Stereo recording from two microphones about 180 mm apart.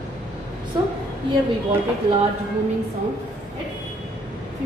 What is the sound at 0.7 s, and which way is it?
Speech, 25° right (ahead or behind).